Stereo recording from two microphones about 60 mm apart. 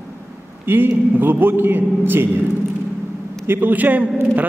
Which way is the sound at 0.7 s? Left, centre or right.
Right.